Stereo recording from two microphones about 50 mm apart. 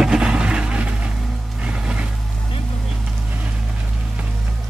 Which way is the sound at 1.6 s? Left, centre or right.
Right.